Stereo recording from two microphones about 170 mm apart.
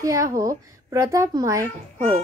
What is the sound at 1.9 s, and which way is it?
Speech, 50° right (ahead or behind).